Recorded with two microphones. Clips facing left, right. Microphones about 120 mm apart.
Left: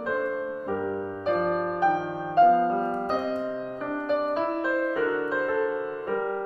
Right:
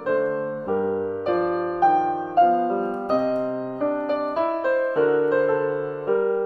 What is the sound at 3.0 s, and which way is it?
Music, 45° right (ahead or behind).